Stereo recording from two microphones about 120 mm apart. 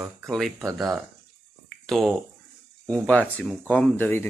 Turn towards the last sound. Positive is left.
turn(degrees=20)  # may be behind; listen again after turning